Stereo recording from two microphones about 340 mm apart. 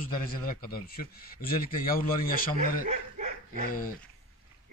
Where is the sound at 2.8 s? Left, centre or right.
Right.